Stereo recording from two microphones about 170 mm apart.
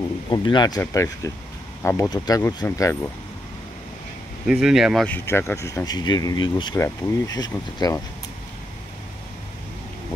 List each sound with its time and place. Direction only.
0.3 s speech: 25° left (ahead or behind)
4.5 s speech: 5° right (ahead or behind)
5.1 s speech: 15° left (ahead or behind)